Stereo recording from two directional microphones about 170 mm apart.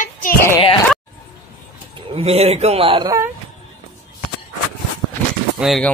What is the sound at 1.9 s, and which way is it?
Speech, 35° right (ahead or behind).